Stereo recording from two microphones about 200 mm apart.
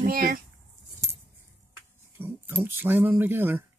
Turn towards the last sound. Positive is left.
turn(degrees=-10)  # may be behind; listen again after turning